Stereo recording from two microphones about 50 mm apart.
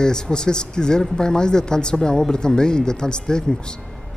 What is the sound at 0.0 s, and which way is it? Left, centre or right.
Speech, centre.